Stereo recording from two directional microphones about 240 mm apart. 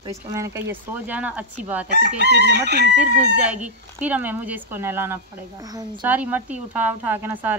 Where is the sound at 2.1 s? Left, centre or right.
Right.